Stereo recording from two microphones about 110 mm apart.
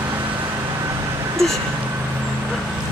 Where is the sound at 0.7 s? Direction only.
25° right (ahead or behind).